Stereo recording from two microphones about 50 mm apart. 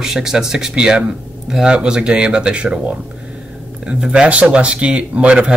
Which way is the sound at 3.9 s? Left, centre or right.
Centre.